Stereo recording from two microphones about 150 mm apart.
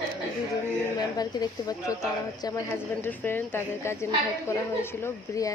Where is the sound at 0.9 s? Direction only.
25° left (ahead or behind).